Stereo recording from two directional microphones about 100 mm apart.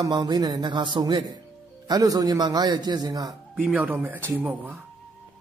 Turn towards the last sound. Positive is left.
turn(degrees=-15)  # may be behind; listen again after turning